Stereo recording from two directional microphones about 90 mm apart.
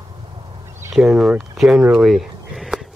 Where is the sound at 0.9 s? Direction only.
5° right (ahead or behind).